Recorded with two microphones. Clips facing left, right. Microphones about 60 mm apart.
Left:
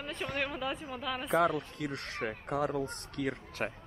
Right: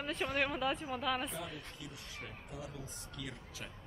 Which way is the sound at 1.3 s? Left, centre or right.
Left.